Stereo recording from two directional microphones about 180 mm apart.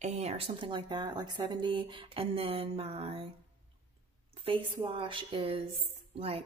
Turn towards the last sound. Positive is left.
turn(degrees=-30)  # may be behind; listen again after turning